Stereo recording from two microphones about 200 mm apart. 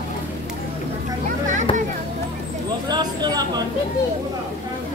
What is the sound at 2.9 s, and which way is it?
Speech, 20° right (ahead or behind).